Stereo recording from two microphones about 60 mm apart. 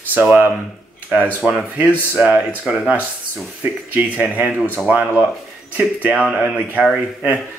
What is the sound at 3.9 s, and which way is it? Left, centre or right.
Speech, right.